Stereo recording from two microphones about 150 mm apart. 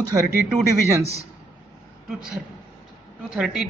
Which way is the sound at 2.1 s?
5° right (ahead or behind).